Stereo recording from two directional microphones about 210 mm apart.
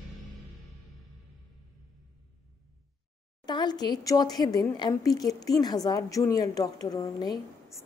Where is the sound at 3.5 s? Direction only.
20° left (ahead or behind).